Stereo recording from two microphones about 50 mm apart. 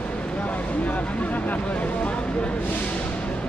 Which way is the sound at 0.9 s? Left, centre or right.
Left.